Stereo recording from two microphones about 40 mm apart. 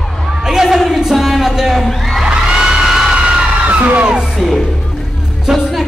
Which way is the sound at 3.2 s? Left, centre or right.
Right.